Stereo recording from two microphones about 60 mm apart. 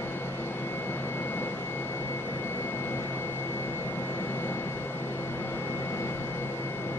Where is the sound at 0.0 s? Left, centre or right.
Left.